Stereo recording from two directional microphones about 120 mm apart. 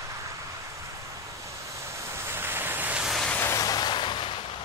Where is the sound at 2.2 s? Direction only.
20° right (ahead or behind); by 3.3 s centre (ahead or behind).